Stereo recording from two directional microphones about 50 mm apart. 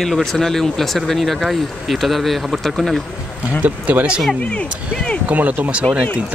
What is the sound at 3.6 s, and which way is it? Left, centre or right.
Speech, right.